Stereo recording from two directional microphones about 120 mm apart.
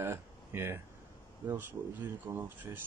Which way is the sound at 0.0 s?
20° right (ahead or behind).